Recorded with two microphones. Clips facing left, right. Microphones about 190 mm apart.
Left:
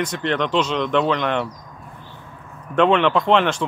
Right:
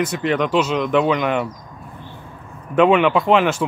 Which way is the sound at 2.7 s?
5° right (ahead or behind).